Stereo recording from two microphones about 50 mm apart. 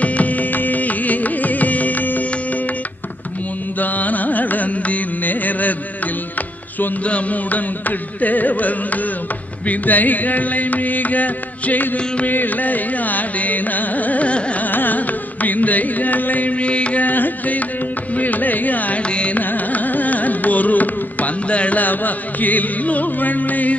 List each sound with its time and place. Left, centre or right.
0.0 s music: left
3.8 s carnatic music: left
7.1 s music: left
8.2 s carnatic music: left
14.7 s carnatic music: left
19.0 s carnatic music: left
19.3 s carnatic music: left